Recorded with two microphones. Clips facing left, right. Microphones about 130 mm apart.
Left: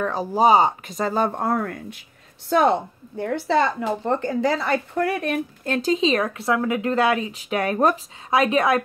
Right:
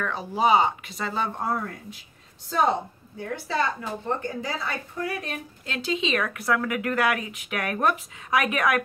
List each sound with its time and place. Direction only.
0.0 s a woman's voice: 35° left (ahead or behind); by 2.7 s 65° left (ahead or behind)
3.2 s a woman's voice: 80° left; by 8.8 s 25° left (ahead or behind)